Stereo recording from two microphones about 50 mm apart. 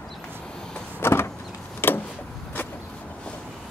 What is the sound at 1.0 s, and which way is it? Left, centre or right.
Power windows, left.